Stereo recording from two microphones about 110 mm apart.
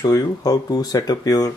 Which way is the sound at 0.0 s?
35° left (ahead or behind).